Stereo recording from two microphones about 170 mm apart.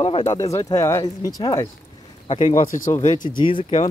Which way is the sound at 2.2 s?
35° left (ahead or behind).